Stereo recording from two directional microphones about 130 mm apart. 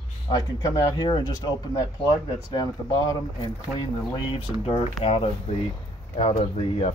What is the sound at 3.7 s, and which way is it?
Speech, 45° left (ahead or behind).